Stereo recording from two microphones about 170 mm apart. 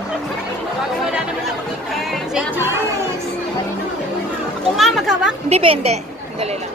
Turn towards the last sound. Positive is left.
turn(degrees=-40)  # may be behind; listen again after turning